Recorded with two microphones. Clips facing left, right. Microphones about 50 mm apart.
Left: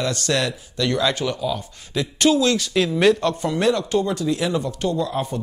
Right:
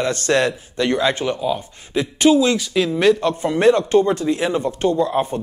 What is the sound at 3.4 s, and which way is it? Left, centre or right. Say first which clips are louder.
A man's voice: right 5 dB; right.